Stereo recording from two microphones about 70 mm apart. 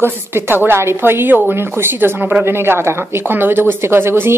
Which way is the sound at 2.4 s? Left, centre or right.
Right.